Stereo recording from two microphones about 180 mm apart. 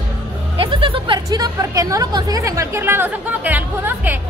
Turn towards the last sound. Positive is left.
turn(degrees=-10)  # may be behind; listen again after turning